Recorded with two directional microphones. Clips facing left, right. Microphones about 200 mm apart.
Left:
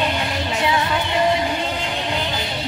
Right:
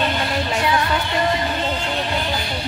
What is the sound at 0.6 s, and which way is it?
Music, 20° left (ahead or behind).